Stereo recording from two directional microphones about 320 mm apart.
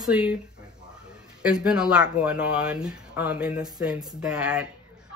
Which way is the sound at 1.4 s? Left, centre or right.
Centre.